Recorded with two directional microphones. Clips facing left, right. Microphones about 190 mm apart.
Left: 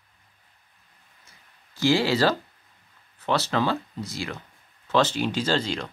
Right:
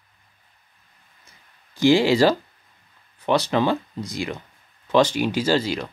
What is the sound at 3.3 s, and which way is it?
Speech, 15° right (ahead or behind).